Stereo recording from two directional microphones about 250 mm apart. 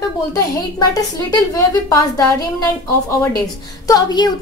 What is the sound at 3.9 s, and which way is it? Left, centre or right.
Speech, centre.